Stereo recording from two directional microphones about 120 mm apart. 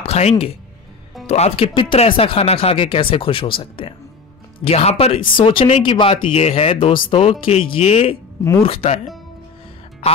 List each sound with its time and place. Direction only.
0.0 s speech: 60° left (ahead or behind)
1.7 s speech: 45° left (ahead or behind)
4.6 s speech: 60° left (ahead or behind)